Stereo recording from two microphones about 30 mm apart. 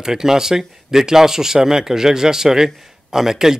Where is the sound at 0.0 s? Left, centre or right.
Centre.